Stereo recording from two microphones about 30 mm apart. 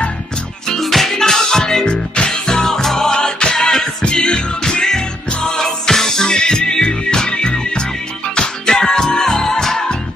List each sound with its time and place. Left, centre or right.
0.7 s music: centre
1.9 s music: left
2.8 s music: centre
3.1 s music: left